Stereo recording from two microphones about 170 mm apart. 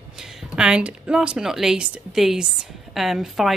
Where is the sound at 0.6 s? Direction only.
5° right (ahead or behind).